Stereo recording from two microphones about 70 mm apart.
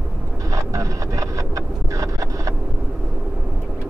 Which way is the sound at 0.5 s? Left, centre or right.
Right.